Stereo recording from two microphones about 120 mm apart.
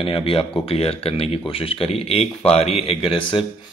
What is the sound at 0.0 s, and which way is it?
Speech, 50° left (ahead or behind).